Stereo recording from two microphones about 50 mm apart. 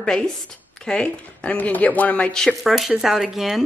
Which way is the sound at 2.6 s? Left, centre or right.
Centre.